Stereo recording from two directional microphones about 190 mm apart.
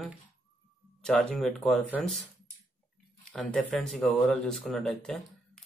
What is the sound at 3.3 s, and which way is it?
Speech, 5° left (ahead or behind).